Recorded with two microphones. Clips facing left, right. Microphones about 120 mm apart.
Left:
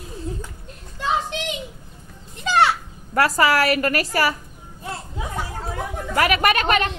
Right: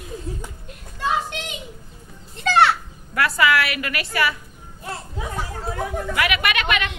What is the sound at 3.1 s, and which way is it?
A woman's voice, 40° left (ahead or behind).